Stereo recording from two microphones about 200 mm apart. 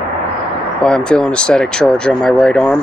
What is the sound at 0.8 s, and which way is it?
Speech, 5° left (ahead or behind).